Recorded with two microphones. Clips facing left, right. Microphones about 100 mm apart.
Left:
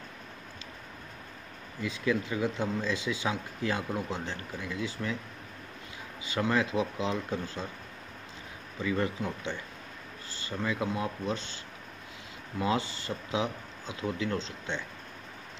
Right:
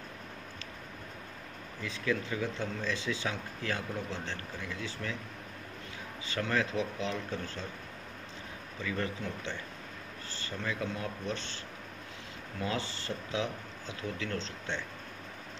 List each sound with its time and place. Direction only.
1.8 s speech: 15° left (ahead or behind)
6.2 s speech: 15° left (ahead or behind)
8.9 s speech: 15° left (ahead or behind)